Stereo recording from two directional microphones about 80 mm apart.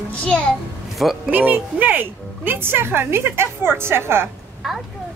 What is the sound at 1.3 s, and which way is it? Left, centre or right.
A woman's voice, right.